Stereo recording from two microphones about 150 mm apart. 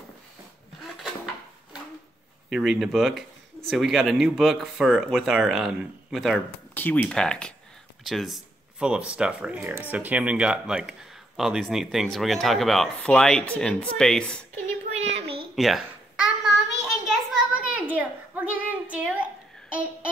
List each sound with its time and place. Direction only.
2.5 s speech: centre (ahead or behind)
6.7 s speech: 10° left (ahead or behind)
14.9 s child singing: 45° right (ahead or behind)
15.5 s speech: centre (ahead or behind)
16.4 s a sound: 5° right (ahead or behind)